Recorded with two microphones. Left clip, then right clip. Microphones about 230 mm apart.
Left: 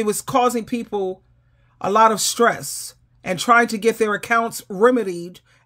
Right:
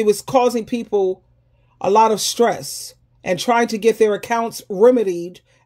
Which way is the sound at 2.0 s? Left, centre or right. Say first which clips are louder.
Even; left.